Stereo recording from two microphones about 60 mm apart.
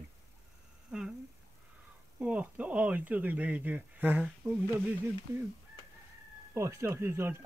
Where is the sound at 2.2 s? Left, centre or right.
Right.